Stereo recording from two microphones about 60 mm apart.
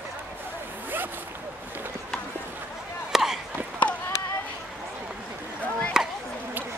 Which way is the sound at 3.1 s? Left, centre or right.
Centre.